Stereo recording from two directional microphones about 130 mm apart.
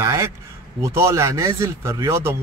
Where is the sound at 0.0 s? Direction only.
25° right (ahead or behind).